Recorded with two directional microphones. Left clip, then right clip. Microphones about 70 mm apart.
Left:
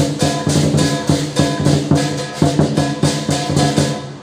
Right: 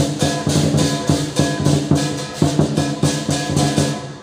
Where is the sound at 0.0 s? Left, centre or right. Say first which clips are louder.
Left 2 dB; centre.